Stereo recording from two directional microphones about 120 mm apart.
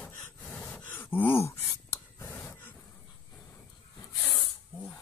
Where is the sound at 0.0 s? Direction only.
20° left (ahead or behind).